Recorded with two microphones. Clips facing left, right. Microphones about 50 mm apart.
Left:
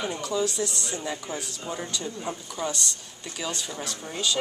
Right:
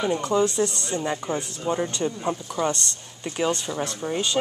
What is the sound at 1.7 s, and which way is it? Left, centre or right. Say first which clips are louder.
Speech: right 9 dB; right.